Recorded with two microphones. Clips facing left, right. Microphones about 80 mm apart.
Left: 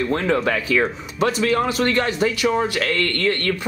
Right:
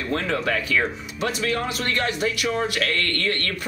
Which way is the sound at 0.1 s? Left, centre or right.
Left.